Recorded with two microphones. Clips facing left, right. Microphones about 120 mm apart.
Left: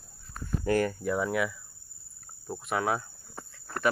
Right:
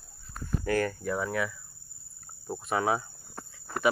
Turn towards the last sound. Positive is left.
turn(degrees=-5)  # may be behind; listen again after turning